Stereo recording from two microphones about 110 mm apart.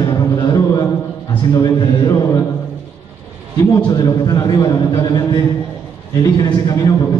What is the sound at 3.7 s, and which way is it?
A man's voice, 35° left (ahead or behind).